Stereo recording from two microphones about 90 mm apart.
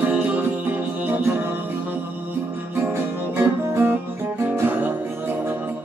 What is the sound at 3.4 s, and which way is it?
Music, 25° right (ahead or behind).